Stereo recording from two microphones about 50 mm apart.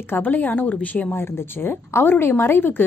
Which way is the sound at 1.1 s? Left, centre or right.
Left.